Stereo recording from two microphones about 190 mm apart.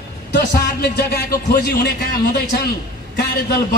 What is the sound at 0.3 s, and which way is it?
A woman's voice, 60° left (ahead or behind).